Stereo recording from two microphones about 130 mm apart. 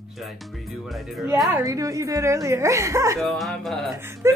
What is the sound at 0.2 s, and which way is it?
Speech, centre (ahead or behind).